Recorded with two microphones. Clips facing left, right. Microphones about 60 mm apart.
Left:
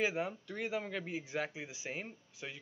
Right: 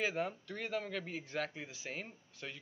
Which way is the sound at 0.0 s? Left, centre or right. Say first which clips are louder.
Left 2 dB; centre.